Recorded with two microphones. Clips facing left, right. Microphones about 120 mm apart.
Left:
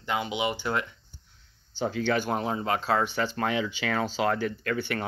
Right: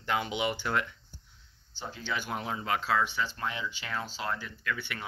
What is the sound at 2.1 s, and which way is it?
Speech, 40° left (ahead or behind).